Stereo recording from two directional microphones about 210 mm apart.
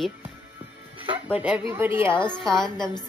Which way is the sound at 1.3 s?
5° right (ahead or behind).